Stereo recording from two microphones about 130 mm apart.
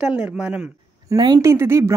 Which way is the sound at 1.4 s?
20° right (ahead or behind).